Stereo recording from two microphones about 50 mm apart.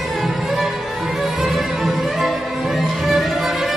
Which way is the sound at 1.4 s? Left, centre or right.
Centre.